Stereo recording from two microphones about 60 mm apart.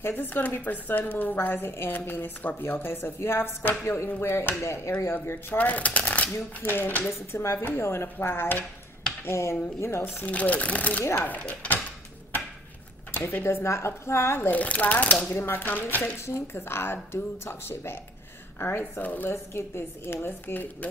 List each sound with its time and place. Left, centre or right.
0.0 s a woman's voice: left
5.5 s a woman's voice: left
7.6 s a woman's voice: left
9.3 s speech: left
10.2 s speech: left
13.1 s speech: left
14.5 s speech: left
15.3 s a woman's voice: left
16.2 s a woman's voice: left
19.3 s a woman's voice: left